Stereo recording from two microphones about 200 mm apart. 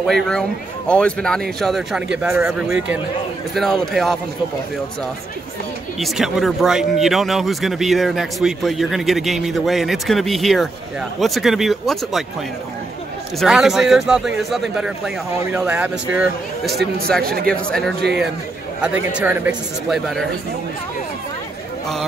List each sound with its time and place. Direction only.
0.0 s speech: centre (ahead or behind)
3.5 s speech: centre (ahead or behind)
5.9 s speech: centre (ahead or behind)
13.4 s speech: centre (ahead or behind)
17.2 s speech: 50° right (ahead or behind)
17.5 s speech: 5° left (ahead or behind)
18.8 s speech: 5° right (ahead or behind)